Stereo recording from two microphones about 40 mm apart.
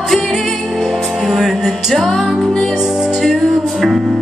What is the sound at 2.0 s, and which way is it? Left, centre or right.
Music, centre.